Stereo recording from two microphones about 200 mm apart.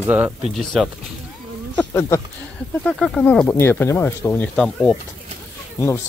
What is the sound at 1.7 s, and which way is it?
Speech, 15° left (ahead or behind).